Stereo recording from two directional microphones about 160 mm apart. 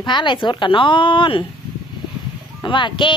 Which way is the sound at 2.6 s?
30° left (ahead or behind).